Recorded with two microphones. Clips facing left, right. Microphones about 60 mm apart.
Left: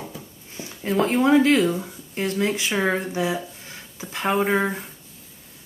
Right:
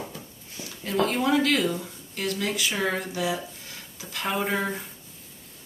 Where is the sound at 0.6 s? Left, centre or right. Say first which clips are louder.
Left 3 dB; left.